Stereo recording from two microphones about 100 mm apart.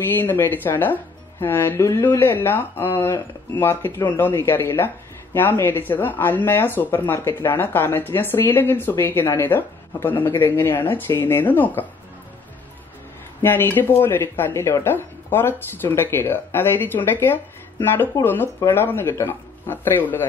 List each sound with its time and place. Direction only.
0.1 s speech: 20° left (ahead or behind)
13.4 s speech: 20° left (ahead or behind)